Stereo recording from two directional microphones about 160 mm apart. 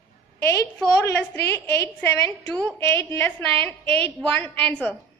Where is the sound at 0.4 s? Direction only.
15° left (ahead or behind).